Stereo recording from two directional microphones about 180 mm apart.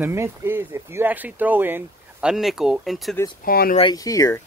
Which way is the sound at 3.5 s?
55° left (ahead or behind).